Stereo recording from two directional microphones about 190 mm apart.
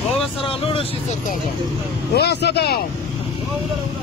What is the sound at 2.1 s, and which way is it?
Vehicle, 60° left (ahead or behind).